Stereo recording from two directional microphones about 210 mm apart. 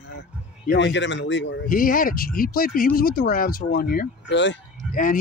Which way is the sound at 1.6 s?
40° left (ahead or behind).